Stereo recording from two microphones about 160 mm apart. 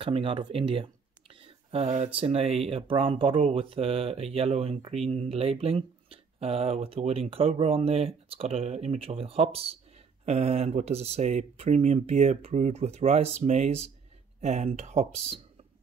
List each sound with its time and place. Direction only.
0.0 s speech: 30° right (ahead or behind)
1.4 s a sound: 35° right (ahead or behind)
2.1 s speech: 40° right (ahead or behind)